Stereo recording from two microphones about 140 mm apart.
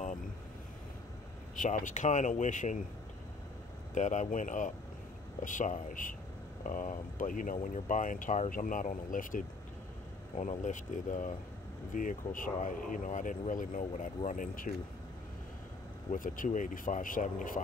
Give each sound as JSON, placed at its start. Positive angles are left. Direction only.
{"t": 1.6, "sound": "speech", "side_deg": 65}
{"t": 3.9, "sound": "speech", "side_deg": 60}
{"t": 10.3, "sound": "speech", "side_deg": 55}
{"t": 16.1, "sound": "speech", "side_deg": 70}